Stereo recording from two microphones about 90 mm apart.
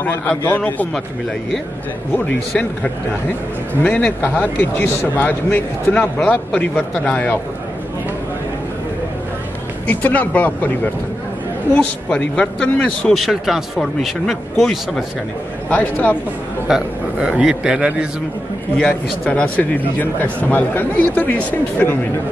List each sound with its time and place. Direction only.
0.0 s a man's voice: 20° left (ahead or behind)
3.8 s speech: 15° left (ahead or behind)
9.8 s a man's voice: 15° left (ahead or behind)
13.1 s speech: centre (ahead or behind)
15.7 s speech: 15° left (ahead or behind)
16.6 s a man's voice: 10° right (ahead or behind)
18.8 s speech: 15° left (ahead or behind)